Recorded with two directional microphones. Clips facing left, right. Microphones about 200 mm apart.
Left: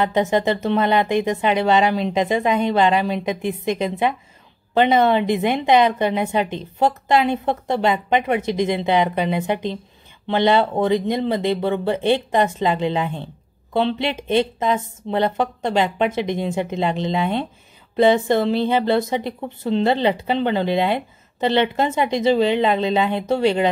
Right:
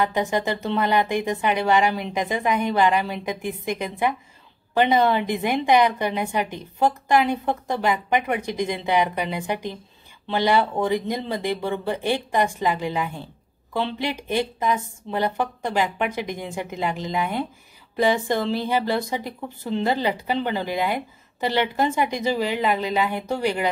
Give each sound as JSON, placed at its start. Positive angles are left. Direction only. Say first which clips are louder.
{"t": 0.0, "sound": "speech", "louder": "left 4 dB", "side_deg": 25}